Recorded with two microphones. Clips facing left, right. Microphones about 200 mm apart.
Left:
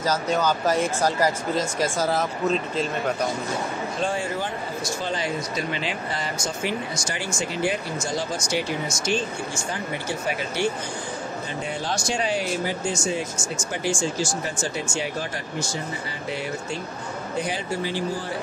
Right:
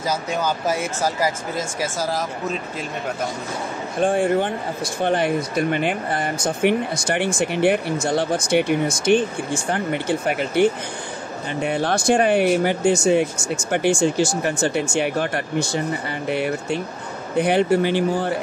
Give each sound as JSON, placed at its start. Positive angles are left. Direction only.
{"t": 0.0, "sound": "speech", "side_deg": -10}
{"t": 4.0, "sound": "speech", "side_deg": -55}